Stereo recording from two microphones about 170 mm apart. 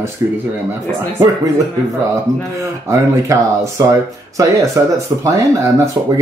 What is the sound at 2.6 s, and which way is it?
Speech, 15° right (ahead or behind).